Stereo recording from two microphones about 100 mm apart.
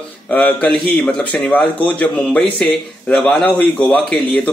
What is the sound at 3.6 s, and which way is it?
Speech, 15° left (ahead or behind).